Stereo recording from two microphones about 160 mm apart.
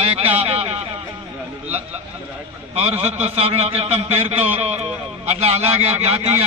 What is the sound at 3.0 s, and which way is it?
A man's voice, 40° right (ahead or behind).